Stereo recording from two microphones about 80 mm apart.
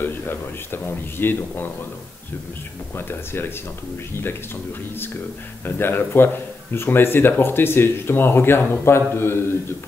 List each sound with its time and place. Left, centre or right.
0.0 s speech: left
3.0 s speech: left
5.7 s speech: left